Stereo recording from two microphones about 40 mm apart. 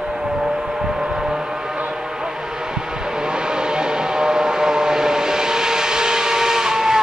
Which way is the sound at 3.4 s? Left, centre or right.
Centre.